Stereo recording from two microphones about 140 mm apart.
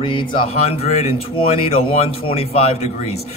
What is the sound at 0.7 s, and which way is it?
Speech, 50° left (ahead or behind).